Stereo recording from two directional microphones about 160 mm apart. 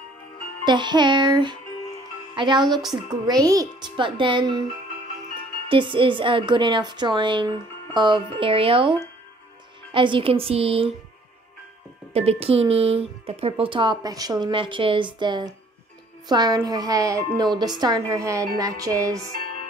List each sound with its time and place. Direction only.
0.7 s a woman's voice: 30° right (ahead or behind)
5.7 s speech: 30° right (ahead or behind)
12.1 s a woman's voice: 40° right (ahead or behind); by 19.2 s 20° right (ahead or behind)